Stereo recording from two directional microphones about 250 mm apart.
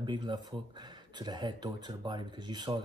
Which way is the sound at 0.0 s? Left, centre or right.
Centre.